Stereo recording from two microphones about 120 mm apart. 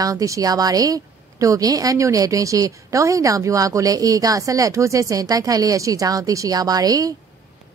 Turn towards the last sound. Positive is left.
turn(degrees=-30)  # may be behind; listen again after turning